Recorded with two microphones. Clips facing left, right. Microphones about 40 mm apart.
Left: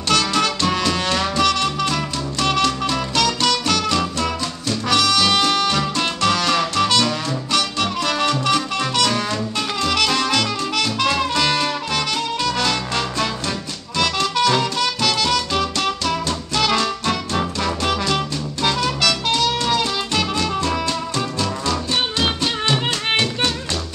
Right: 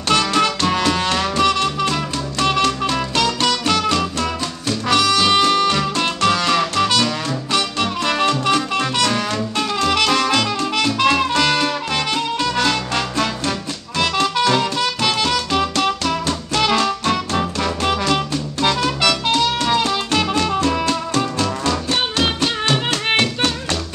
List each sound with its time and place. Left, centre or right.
0.1 s music: centre